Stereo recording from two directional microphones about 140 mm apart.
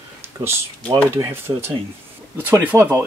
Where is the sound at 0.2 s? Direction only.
15° right (ahead or behind).